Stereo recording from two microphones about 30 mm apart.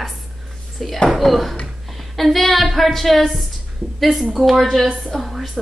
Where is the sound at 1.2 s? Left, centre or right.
Centre.